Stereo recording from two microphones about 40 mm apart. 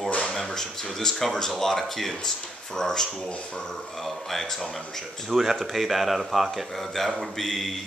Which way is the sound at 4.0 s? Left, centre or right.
Centre.